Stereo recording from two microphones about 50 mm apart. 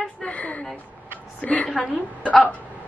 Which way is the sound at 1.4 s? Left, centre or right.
Left.